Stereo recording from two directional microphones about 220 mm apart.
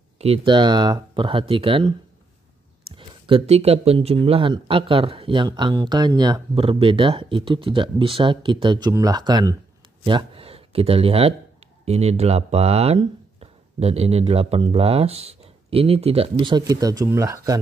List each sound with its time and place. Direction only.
0.2 s speech: 25° right (ahead or behind)
3.0 s speech: 25° right (ahead or behind)